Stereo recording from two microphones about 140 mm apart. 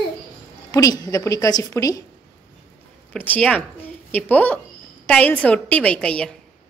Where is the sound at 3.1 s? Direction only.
10° left (ahead or behind).